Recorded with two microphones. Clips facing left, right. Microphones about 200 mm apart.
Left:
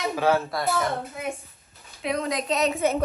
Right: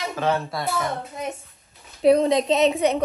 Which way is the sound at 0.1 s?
10° left (ahead or behind).